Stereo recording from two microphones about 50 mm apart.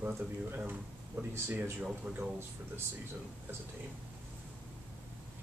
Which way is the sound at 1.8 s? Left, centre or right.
Right.